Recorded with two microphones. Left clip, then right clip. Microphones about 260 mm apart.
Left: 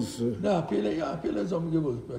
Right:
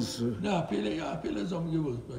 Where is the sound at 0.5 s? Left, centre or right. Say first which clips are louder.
Left 3 dB; right.